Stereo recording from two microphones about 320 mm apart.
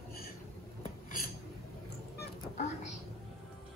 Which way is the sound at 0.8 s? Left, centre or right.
Left.